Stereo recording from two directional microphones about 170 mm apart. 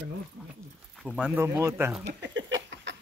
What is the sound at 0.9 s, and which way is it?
Speech, centre (ahead or behind).